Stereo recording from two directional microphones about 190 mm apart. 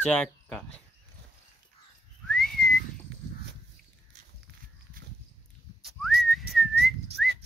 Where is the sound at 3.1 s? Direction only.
70° right (ahead or behind).